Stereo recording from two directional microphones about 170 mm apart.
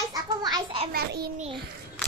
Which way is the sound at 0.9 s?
65° right (ahead or behind).